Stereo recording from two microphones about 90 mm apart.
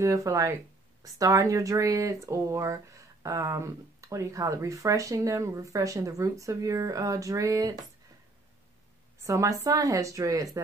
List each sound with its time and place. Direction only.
0.0 s speech: 35° right (ahead or behind)
9.2 s speech: 35° right (ahead or behind)